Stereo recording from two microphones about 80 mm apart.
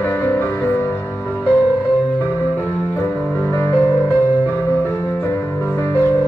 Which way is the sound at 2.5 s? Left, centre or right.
Left.